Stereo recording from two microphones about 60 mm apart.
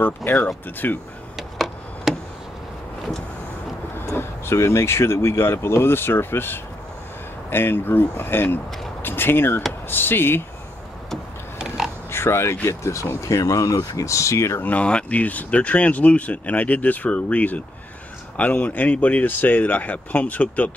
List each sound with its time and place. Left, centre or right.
0.0 s speech: left
1.3 s a sound: centre
4.0 s speech: left
11.5 s a sound: centre
12.1 s speech: left
14.6 s speech: left